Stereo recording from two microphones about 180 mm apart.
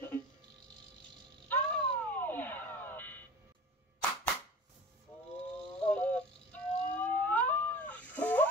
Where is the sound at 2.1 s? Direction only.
10° left (ahead or behind).